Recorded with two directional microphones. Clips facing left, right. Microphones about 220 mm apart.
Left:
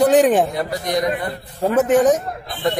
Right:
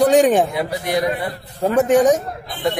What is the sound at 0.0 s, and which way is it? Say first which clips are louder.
A man's voice: even; centre (ahead or behind).